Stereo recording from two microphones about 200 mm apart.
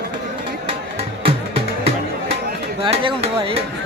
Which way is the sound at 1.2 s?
30° right (ahead or behind).